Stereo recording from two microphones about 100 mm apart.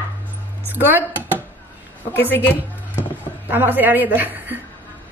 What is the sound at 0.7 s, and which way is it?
Speech, 20° right (ahead or behind).